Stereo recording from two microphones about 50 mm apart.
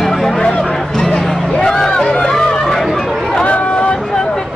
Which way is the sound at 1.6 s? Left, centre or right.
Centre.